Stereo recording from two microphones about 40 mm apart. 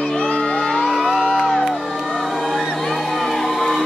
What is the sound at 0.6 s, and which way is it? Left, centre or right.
Music, centre.